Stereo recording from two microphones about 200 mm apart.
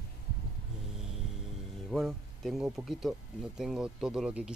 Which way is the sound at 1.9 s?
Centre (ahead or behind).